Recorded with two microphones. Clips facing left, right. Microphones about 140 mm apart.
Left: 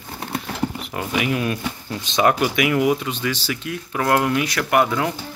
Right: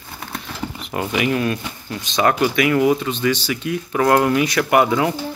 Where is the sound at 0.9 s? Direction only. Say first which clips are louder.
Right 3 dB; centre (ahead or behind).